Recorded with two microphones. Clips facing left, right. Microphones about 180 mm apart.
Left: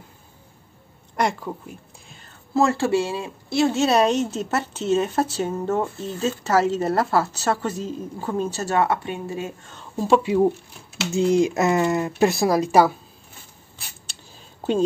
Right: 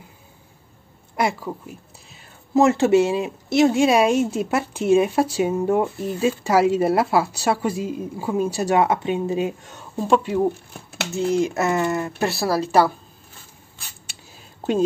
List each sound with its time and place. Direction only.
1.1 s speech: 5° right (ahead or behind)
2.5 s speech: 20° right (ahead or behind)
9.9 s speech: 5° left (ahead or behind)